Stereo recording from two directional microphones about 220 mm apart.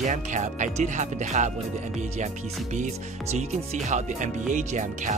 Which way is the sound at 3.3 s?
30° right (ahead or behind).